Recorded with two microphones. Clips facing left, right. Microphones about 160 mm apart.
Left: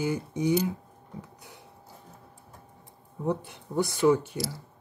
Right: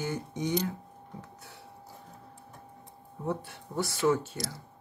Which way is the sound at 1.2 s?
15° left (ahead or behind).